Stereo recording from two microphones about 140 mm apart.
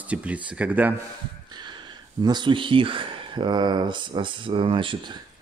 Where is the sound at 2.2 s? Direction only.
30° right (ahead or behind).